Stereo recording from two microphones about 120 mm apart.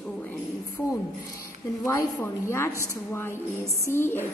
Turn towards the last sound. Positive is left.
turn(degrees=20)  # may be behind; listen again after turning